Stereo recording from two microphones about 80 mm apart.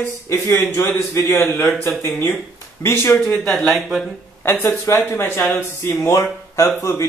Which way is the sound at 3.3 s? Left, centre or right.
Centre.